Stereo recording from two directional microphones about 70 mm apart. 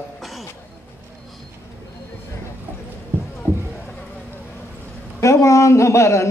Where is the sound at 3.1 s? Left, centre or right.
Left.